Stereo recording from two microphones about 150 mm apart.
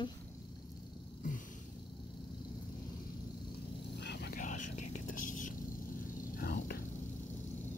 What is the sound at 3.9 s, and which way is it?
Whispering, 90° left.